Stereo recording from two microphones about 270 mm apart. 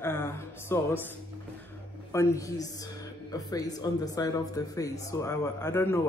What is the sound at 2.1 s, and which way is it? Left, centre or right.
A woman's voice, centre.